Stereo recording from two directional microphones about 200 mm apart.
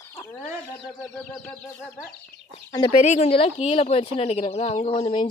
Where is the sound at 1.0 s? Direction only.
5° left (ahead or behind).